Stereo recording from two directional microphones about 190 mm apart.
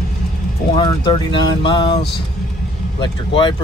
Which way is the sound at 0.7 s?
25° left (ahead or behind).